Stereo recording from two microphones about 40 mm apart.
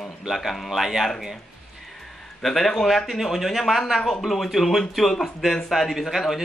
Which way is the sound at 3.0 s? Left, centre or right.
Centre.